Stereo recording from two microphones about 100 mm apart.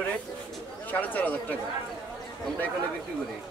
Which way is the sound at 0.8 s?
15° left (ahead or behind).